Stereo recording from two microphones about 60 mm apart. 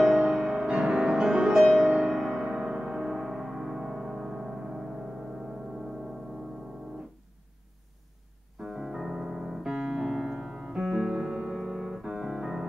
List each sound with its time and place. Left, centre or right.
0.0 s music: centre
0.5 s music: centre
0.7 s music: centre
8.6 s piano: centre